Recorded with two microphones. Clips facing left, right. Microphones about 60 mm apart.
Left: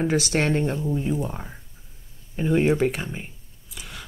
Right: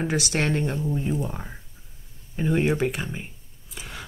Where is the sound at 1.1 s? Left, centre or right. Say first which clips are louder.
Left 1 dB; centre.